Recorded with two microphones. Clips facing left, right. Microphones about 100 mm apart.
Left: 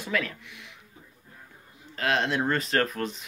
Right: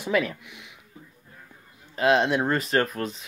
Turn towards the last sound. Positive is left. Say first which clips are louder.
# right 2 dB
turn(degrees=0)  # may be behind; listen again after turning